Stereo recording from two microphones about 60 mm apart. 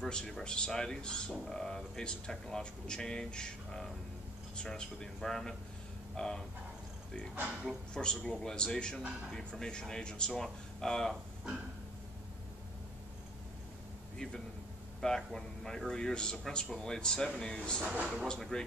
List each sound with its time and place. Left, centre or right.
0.1 s speech: centre
7.9 s speech: centre
14.1 s a man's voice: centre
17.8 s speech: centre
18.2 s speech: centre